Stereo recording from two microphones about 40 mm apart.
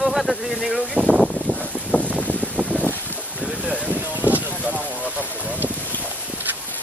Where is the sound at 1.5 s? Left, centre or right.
Left.